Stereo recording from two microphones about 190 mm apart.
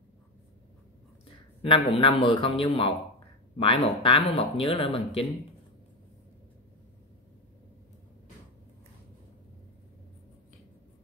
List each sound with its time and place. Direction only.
1.6 s speech: 30° left (ahead or behind)